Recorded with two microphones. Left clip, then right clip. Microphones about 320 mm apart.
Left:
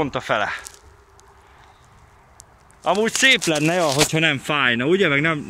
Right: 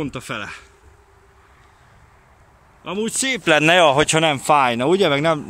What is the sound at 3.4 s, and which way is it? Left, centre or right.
Speech, right.